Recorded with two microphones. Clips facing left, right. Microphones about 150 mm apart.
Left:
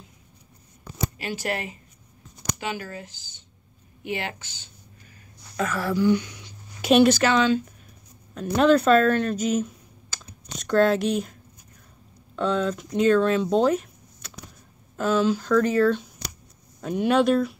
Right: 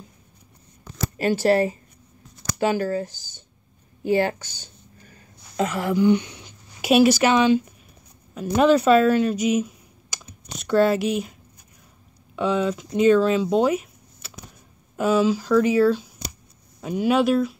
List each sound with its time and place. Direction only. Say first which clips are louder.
1.1 s speech: right 14 dB; 40° right (ahead or behind)
3.1 s speech: right 2 dB; 20° left (ahead or behind)
4.0 s a sound: right 10 dB; 35° right (ahead or behind)
5.6 s a sound: right 3 dB; 20° right (ahead or behind)
6.8 s speech: right 1 dB; 10° right (ahead or behind)
12.4 s speech: right 2 dB; 10° right (ahead or behind)